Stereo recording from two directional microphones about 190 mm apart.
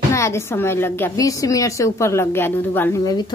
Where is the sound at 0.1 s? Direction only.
15° left (ahead or behind).